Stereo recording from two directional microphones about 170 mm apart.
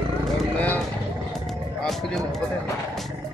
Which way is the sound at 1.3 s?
Centre (ahead or behind).